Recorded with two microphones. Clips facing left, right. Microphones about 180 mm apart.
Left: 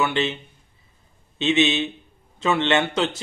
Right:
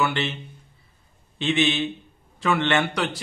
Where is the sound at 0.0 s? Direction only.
20° left (ahead or behind).